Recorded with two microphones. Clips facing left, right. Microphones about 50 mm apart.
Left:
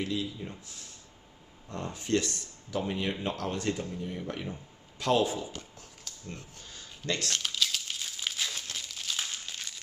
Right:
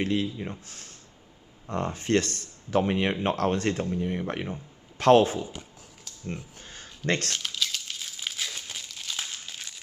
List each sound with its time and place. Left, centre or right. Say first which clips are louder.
0.0 s speech: right 6 dB; right
5.4 s speech: right 3 dB; centre
6.7 s a sound: right 6 dB; right
7.3 s crumpling: even; centre